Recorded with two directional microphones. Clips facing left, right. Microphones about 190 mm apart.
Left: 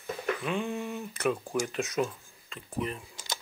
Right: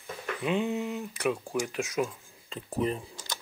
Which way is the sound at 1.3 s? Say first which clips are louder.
Even; centre (ahead or behind).